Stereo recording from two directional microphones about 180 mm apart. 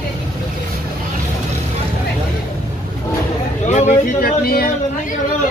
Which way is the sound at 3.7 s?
50° left (ahead or behind).